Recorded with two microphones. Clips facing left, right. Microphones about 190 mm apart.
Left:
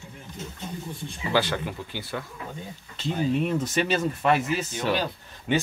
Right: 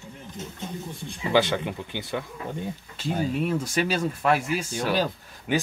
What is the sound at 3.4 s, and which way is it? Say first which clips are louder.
Speech: even; 5° right (ahead or behind).